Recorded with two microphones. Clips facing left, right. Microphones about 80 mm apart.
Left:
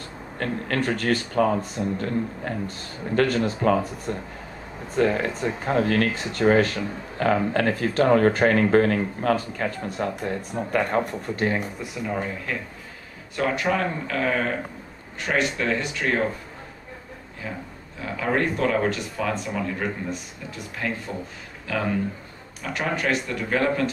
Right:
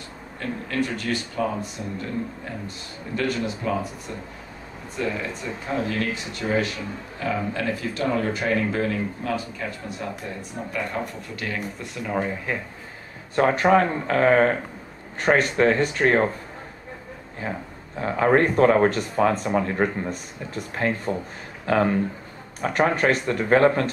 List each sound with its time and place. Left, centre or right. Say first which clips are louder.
0.4 s speech: left 2 dB; left
11.8 s speech: left 2 dB; centre
12.5 s speech: right 2 dB; right
13.4 s speech: right 6 dB; right
17.9 s speech: right 6 dB; right